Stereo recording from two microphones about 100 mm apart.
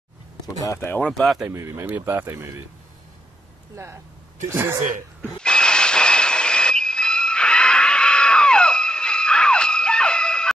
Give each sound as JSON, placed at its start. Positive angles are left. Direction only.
{"t": 0.7, "sound": "speech", "side_deg": 20}
{"t": 1.0, "sound": "speech", "side_deg": 5}
{"t": 1.5, "sound": "speech", "side_deg": -25}
{"t": 3.7, "sound": "speech", "side_deg": -30}
{"t": 5.4, "sound": "a sound", "side_deg": 10}